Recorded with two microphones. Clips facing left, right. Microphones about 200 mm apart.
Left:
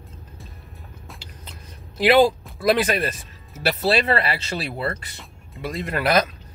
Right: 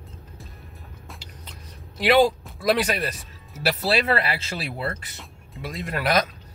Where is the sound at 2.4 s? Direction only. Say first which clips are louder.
Left 2 dB; centre (ahead or behind).